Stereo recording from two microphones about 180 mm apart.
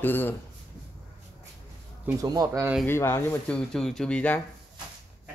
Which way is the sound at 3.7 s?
Centre (ahead or behind).